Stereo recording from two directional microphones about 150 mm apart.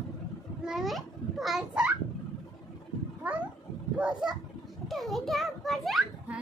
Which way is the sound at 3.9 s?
5° right (ahead or behind).